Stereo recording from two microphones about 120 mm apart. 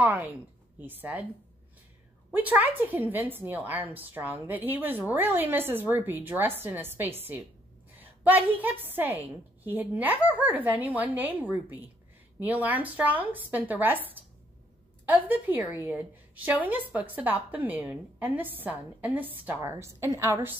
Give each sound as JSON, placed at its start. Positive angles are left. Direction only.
{"t": 0.7, "sound": "a woman's voice", "side_deg": -15}
{"t": 2.3, "sound": "a woman's voice", "side_deg": -15}